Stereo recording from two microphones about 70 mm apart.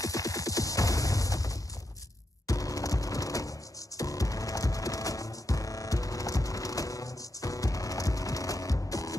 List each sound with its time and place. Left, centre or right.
0.0 s music: left